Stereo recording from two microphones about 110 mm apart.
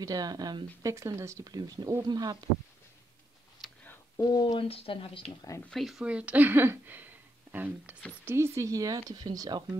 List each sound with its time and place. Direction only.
0.0 s speech: 35° right (ahead or behind)
4.2 s speech: 35° left (ahead or behind)
4.6 s a woman's voice: 60° left (ahead or behind)
5.7 s speech: centre (ahead or behind); by 9.7 s 40° right (ahead or behind)